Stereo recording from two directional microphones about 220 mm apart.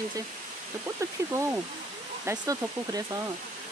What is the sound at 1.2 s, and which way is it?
Speech, 15° right (ahead or behind).